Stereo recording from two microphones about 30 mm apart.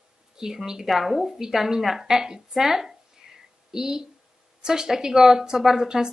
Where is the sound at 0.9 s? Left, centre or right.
Centre.